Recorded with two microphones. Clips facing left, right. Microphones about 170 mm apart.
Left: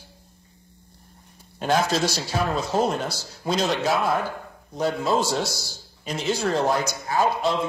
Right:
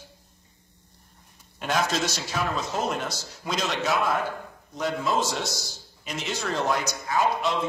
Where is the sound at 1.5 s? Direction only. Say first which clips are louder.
Left 4 dB; 35° left (ahead or behind).